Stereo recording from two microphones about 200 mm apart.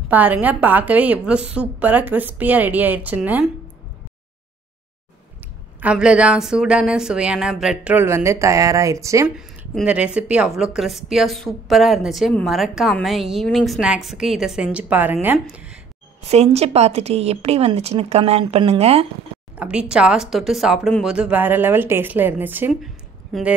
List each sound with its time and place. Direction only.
0.1 s a woman's voice: 10° right (ahead or behind)
5.8 s a woman's voice: 5° right (ahead or behind)
16.3 s a woman's voice: 30° right (ahead or behind)
19.5 s a woman's voice: 5° right (ahead or behind)